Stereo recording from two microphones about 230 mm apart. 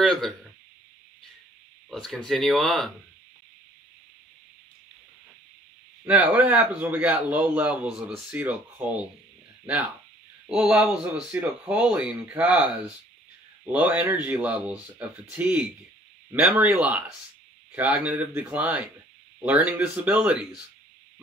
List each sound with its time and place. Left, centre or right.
0.0 s speech: centre
1.9 s speech: centre
6.0 s a man's voice: centre
10.4 s a man's voice: centre
18.0 s a man's voice: centre